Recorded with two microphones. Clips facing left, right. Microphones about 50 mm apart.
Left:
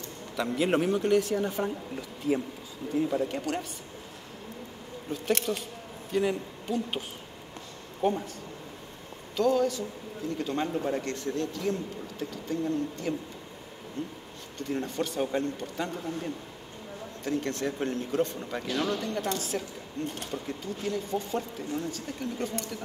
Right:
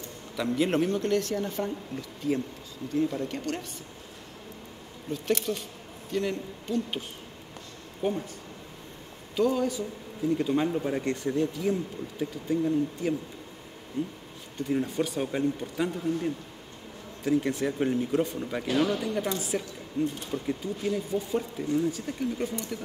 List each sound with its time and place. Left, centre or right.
0.4 s speech: centre
5.1 s speech: centre
6.1 s speech: centre
9.4 s speech: centre